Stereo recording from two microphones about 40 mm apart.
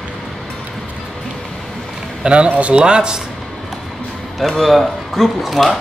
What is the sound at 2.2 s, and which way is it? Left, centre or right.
Speech, right.